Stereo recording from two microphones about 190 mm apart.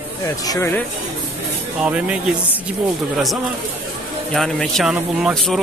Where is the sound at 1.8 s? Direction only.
5° right (ahead or behind).